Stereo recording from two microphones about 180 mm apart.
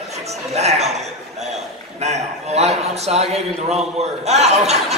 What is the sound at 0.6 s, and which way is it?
A man's voice, 35° right (ahead or behind).